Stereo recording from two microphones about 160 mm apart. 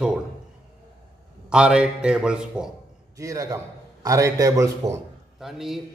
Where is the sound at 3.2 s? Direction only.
20° right (ahead or behind).